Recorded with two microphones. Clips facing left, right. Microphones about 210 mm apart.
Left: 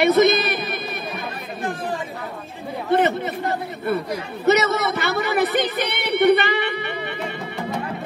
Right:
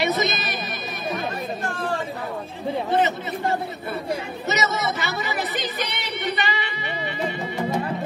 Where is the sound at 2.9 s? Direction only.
55° left (ahead or behind).